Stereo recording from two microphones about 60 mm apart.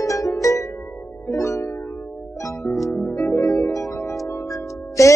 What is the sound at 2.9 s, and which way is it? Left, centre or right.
Music, left.